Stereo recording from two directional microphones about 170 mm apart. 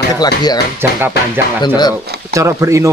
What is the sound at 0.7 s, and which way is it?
Speech, 10° right (ahead or behind).